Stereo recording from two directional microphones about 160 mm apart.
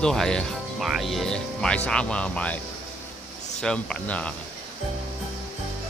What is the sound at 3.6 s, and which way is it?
Speech, 5° left (ahead or behind).